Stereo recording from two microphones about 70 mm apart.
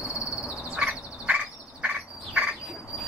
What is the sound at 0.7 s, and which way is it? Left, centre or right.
Duck, centre.